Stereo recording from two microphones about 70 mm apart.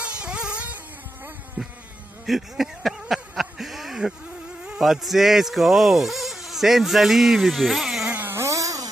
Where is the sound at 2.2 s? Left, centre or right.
Centre.